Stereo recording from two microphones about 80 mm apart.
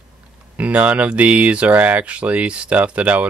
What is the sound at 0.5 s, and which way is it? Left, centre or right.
Speech, centre.